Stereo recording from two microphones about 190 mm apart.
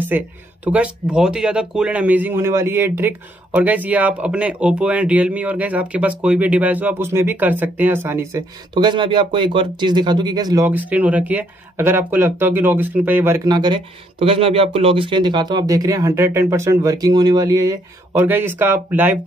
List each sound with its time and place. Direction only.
0.1 s speech: 10° right (ahead or behind)
13.5 s speech: 25° right (ahead or behind)